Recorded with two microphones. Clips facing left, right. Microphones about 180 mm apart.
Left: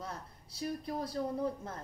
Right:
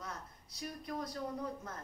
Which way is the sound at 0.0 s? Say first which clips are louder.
Left 3 dB; 30° left (ahead or behind).